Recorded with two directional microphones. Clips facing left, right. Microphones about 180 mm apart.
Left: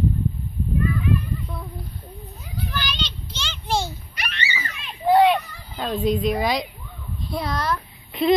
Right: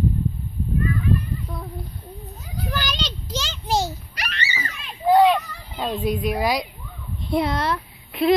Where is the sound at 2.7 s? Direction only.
40° right (ahead or behind).